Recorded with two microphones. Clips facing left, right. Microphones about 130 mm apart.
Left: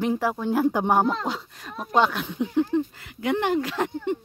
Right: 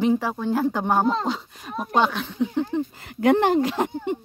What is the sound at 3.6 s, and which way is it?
Speech, 20° right (ahead or behind).